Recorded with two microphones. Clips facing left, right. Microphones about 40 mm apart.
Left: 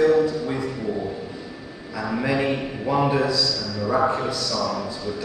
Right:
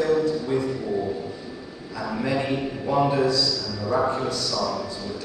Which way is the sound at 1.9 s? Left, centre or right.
Centre.